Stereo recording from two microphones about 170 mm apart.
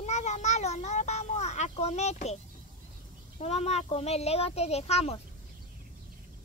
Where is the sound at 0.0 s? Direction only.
40° left (ahead or behind).